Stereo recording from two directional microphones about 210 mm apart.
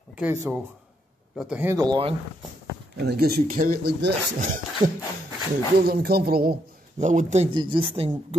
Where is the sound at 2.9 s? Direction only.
50° right (ahead or behind).